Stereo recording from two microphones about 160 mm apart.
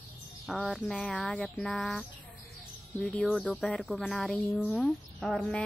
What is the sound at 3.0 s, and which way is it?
Speech, 5° left (ahead or behind).